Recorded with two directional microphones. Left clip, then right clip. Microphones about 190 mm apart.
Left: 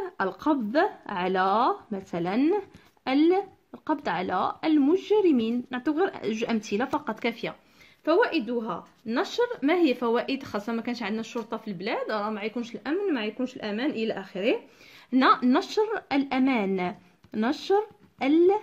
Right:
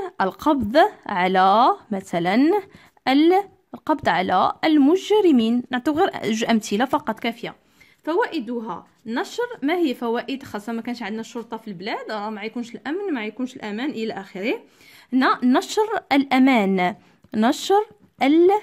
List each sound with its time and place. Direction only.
0.0 s speech: 45° right (ahead or behind)